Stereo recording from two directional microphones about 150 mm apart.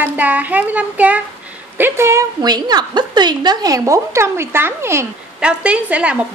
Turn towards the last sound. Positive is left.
turn(degrees=-5)  # may be behind; listen again after turning